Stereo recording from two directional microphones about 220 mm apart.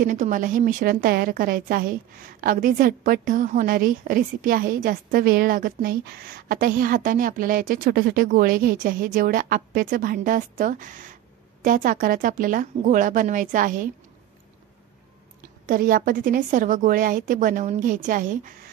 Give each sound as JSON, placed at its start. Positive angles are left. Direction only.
{"t": 0.0, "sound": "a woman's voice", "side_deg": -35}
{"t": 15.6, "sound": "a woman's voice", "side_deg": -40}